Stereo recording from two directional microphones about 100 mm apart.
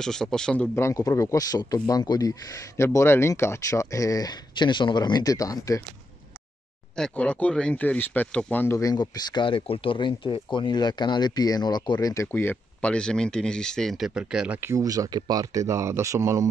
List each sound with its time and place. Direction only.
0.0 s speech: 5° left (ahead or behind)
0.7 s speech: 30° left (ahead or behind)
7.0 s speech: 15° left (ahead or behind)
8.7 s speech: 40° left (ahead or behind)
12.3 s speech: 20° left (ahead or behind)
12.8 s speech: 10° left (ahead or behind); by 14.6 s 10° right (ahead or behind)
14.6 s speech: 30° right (ahead or behind)